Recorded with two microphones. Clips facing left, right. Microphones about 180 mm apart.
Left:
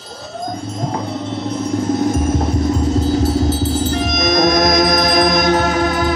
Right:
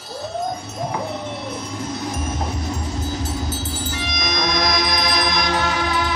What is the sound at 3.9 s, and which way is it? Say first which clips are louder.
Music: left 10 dB; 45° left (ahead or behind).